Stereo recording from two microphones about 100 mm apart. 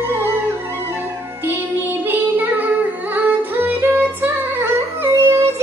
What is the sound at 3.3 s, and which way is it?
Music, 20° right (ahead or behind).